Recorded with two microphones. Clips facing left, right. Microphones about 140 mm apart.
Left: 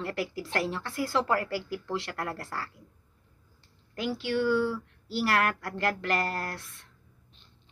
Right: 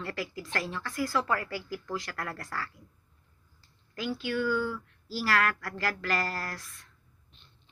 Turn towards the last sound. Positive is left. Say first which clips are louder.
# left 3 dB
turn(degrees=30)  # may be behind; listen again after turning